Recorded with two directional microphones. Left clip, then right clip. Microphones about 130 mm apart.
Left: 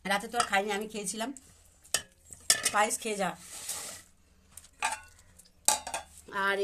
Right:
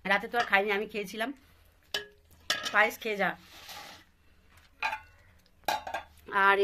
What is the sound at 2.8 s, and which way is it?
Speech, 15° left (ahead or behind).